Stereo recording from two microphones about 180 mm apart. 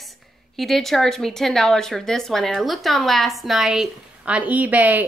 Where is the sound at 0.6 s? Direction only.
Centre (ahead or behind).